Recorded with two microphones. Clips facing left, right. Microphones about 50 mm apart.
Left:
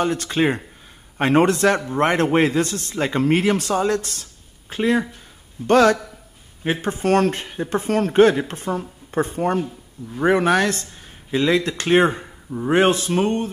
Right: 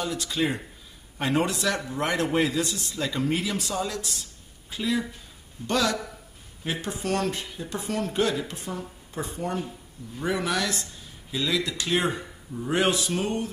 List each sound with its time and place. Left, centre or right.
0.0 s a man's voice: left